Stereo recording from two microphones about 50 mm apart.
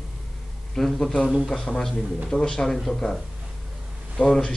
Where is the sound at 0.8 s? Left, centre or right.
Centre.